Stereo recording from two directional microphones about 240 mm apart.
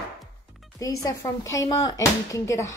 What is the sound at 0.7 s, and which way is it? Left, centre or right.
Speech, centre.